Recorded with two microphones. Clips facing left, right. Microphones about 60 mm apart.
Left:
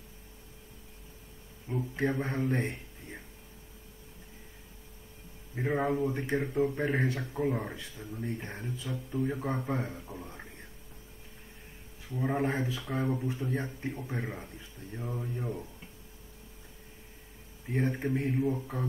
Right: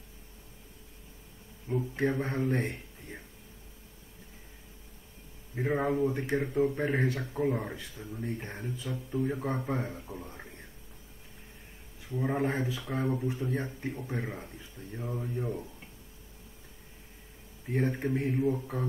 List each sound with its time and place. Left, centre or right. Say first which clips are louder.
1.7 s speech: right 2 dB; centre
5.5 s speech: right 1 dB; centre
7.7 s speech: right 1 dB; right
8.1 s speech: even; centre
12.1 s speech: even; centre
17.6 s speech: right 1 dB; centre